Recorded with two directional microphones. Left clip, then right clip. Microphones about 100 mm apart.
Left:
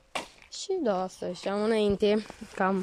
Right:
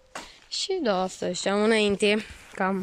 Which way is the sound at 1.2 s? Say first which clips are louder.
Right 5 dB; 10° left (ahead or behind).